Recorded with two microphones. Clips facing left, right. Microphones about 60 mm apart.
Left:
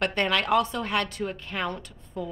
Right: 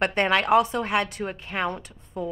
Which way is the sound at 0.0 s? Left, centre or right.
Right.